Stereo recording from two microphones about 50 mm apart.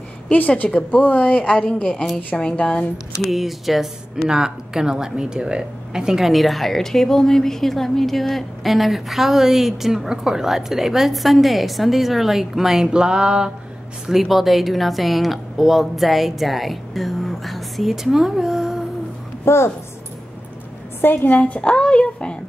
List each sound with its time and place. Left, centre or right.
0.3 s a woman's voice: left
3.3 s speech: centre
12.9 s a sound: centre
14.1 s speech: centre
19.4 s speech: left
21.0 s a woman's voice: left
21.3 s speech: left